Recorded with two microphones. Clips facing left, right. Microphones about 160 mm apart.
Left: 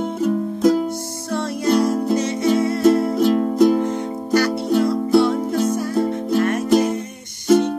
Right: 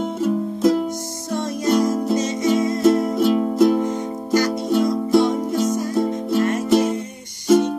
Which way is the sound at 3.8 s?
15° right (ahead or behind).